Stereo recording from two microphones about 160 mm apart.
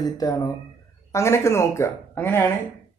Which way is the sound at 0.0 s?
25° left (ahead or behind).